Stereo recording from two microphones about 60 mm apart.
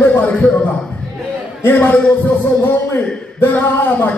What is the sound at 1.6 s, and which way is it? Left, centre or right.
Speech, left.